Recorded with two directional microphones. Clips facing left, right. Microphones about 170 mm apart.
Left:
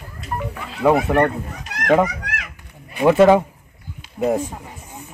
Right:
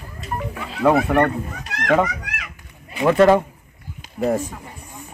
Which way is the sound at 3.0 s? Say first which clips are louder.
Left 2 dB; 10° left (ahead or behind).